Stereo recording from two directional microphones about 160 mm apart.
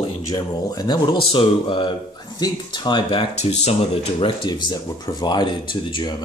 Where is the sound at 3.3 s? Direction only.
45° left (ahead or behind).